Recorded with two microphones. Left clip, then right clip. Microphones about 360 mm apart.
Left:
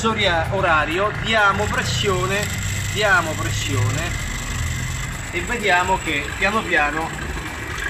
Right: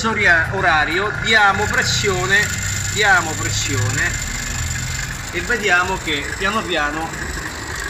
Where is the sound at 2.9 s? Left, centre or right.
Centre.